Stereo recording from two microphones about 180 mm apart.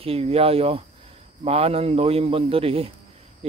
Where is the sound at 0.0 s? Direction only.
35° right (ahead or behind).